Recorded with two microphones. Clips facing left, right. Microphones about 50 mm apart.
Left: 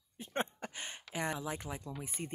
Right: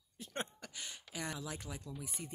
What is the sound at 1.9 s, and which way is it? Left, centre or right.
Speech, left.